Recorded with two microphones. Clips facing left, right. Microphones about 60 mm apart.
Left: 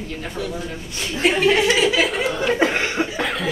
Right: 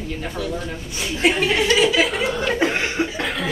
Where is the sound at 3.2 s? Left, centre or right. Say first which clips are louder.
Left 1 dB; centre.